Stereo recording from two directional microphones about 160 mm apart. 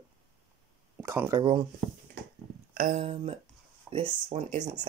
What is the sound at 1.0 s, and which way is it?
Speech, 15° right (ahead or behind).